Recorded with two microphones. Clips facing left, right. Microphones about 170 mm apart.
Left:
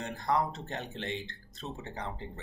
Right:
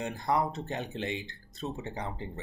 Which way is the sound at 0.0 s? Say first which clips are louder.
Right 1 dB; 10° right (ahead or behind).